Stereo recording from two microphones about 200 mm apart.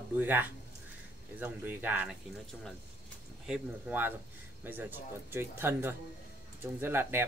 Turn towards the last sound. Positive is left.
turn(degrees=-10)  # may be behind; listen again after turning